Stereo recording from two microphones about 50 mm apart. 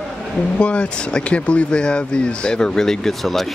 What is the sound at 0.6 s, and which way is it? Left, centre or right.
Speech, left.